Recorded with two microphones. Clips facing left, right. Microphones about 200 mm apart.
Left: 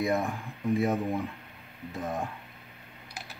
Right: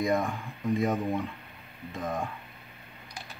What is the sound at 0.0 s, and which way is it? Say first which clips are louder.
Speech: right 1 dB; 5° left (ahead or behind).